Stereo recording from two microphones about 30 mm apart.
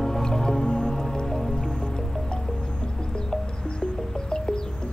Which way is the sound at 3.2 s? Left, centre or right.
Left.